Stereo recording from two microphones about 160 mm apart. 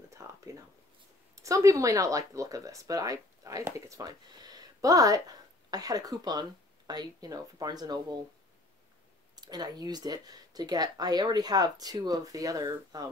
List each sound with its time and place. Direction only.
0.1 s speech: 20° right (ahead or behind)
9.3 s speech: 25° right (ahead or behind)